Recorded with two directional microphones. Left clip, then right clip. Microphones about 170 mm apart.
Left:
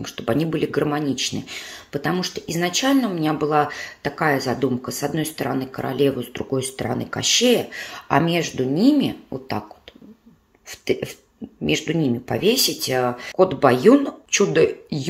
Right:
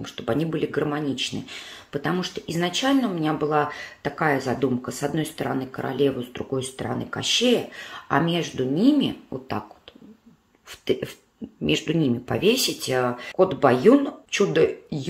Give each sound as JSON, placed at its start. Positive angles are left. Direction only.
{"t": 0.0, "sound": "speech", "side_deg": 20}
{"t": 10.7, "sound": "speech", "side_deg": 10}